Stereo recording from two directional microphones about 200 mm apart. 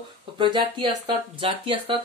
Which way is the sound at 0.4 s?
25° right (ahead or behind).